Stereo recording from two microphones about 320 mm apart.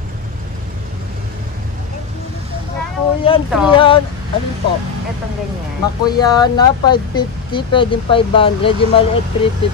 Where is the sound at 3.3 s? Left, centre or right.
Centre.